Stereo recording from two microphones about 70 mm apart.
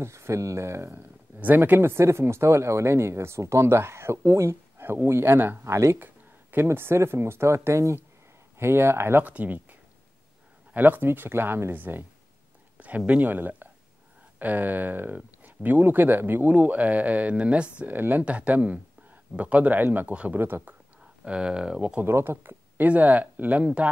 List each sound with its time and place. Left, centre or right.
0.0 s speech: right
1.4 s speech: right
5.7 s speech: right
9.2 s speech: right
21.0 s speech: centre
22.0 s speech: right
22.8 s speech: right